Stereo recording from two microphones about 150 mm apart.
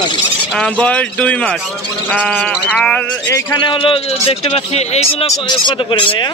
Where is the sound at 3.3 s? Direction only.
30° left (ahead or behind).